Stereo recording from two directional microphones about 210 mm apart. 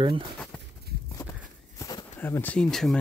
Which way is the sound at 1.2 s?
15° left (ahead or behind).